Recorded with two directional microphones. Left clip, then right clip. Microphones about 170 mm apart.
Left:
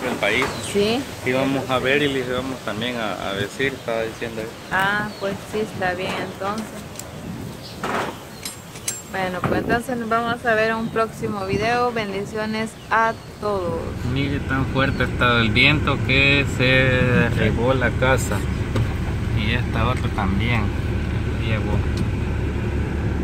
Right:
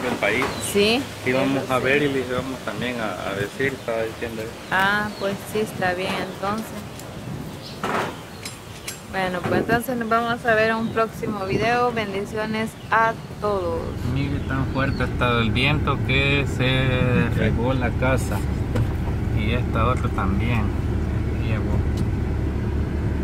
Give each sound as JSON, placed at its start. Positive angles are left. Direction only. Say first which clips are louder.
{"t": 0.2, "sound": "dishes", "louder": "left 1 dB", "side_deg": 65}
{"t": 0.7, "sound": "speech", "louder": "right 1 dB", "side_deg": -25}
{"t": 1.2, "sound": "speech", "louder": "left 3 dB", "side_deg": 55}
{"t": 4.6, "sound": "speech", "louder": "right 1 dB", "side_deg": -25}
{"t": 9.1, "sound": "speech", "louder": "even", "side_deg": -15}
{"t": 14.8, "sound": "speech", "louder": "left 4 dB", "side_deg": -5}
{"t": 17.7, "sound": "speech", "louder": "left 4 dB", "side_deg": 15}
{"t": 19.3, "sound": "speech", "louder": "left 1 dB", "side_deg": 5}